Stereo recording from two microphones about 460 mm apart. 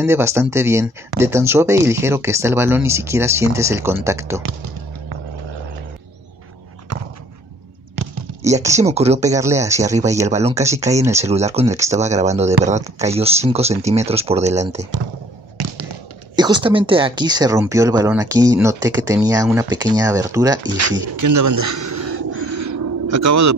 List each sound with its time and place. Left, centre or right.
0.0 s speech: centre
6.9 s a sound: right
8.4 s speech: centre
15.6 s a sound: right
16.3 s speech: centre
21.2 s owl: right